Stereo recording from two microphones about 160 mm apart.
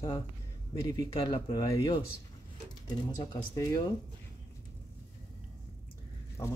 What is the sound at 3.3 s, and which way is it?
Speech, 25° left (ahead or behind).